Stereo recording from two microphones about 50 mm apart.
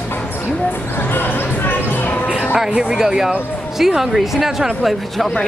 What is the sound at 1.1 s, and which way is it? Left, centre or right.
Music, left.